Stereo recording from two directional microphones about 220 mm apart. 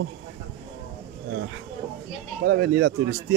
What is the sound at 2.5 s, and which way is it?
Speech, 50° right (ahead or behind).